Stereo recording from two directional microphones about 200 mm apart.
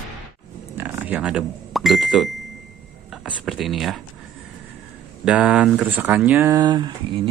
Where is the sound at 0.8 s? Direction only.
10° right (ahead or behind).